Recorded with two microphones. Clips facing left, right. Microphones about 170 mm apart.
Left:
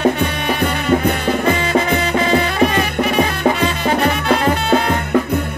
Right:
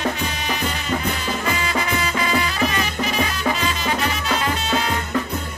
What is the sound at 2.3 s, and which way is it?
Music, 55° left (ahead or behind).